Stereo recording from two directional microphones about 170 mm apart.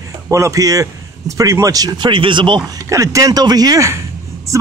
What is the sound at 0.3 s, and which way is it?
A man's voice, 20° right (ahead or behind).